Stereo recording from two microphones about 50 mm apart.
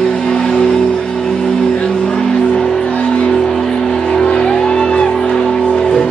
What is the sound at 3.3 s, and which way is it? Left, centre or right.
Music, centre.